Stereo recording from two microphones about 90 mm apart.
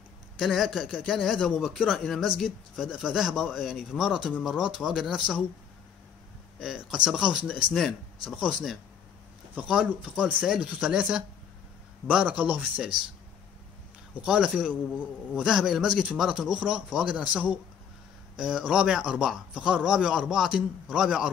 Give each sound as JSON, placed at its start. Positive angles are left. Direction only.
{"t": 0.4, "sound": "a man's voice", "side_deg": 0}
{"t": 6.6, "sound": "a man's voice", "side_deg": -5}
{"t": 9.6, "sound": "a man's voice", "side_deg": -15}
{"t": 14.2, "sound": "a man's voice", "side_deg": -10}